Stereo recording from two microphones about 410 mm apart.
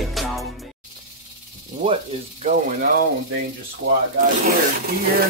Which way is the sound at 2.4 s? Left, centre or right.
Centre.